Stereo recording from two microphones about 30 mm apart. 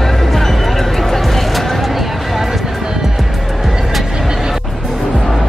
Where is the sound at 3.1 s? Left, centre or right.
Centre.